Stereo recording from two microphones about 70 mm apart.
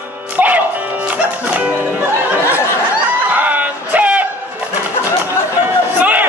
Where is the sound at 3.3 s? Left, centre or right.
Right.